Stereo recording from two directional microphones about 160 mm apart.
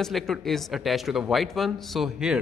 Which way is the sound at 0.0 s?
Centre (ahead or behind).